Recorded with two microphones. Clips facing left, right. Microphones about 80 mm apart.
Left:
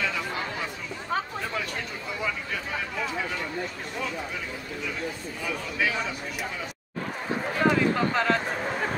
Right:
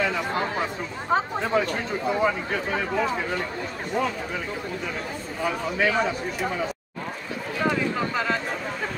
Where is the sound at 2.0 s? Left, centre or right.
Right.